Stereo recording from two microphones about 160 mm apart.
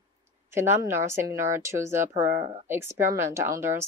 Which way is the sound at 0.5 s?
15° right (ahead or behind).